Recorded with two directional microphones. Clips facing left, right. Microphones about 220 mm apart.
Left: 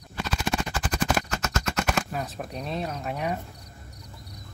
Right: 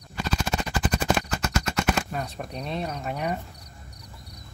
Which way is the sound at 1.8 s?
Centre (ahead or behind).